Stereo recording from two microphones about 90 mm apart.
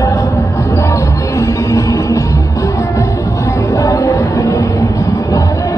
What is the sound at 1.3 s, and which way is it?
Music, 35° left (ahead or behind).